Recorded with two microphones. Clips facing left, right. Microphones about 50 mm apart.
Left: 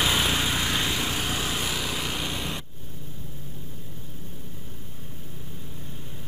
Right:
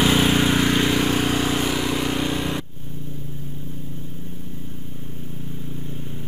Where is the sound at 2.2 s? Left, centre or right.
Centre.